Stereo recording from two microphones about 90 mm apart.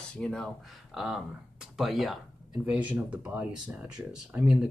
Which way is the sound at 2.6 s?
15° right (ahead or behind).